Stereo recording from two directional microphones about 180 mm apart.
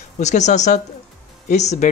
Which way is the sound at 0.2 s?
40° left (ahead or behind).